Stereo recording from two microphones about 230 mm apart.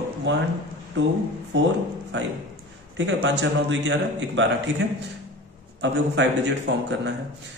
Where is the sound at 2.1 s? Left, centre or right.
Right.